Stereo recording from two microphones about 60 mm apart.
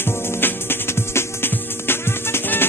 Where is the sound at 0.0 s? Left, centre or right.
Left.